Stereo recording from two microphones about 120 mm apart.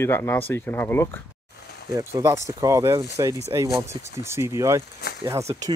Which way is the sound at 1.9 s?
25° right (ahead or behind).